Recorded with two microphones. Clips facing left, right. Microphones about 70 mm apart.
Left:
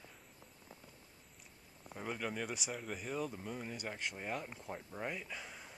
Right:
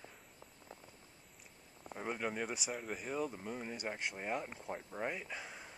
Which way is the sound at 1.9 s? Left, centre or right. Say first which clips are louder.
Right 2 dB; centre.